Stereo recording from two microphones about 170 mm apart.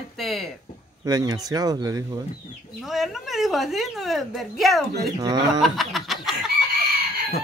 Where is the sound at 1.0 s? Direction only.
20° right (ahead or behind).